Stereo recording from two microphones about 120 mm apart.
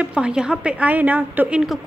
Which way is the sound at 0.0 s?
10° right (ahead or behind).